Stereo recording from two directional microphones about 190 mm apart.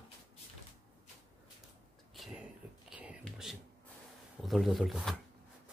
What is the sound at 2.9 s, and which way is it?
Whispering, 5° right (ahead or behind).